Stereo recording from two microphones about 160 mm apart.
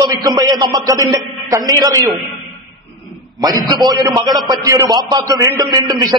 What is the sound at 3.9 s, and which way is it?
A man's voice, 25° right (ahead or behind).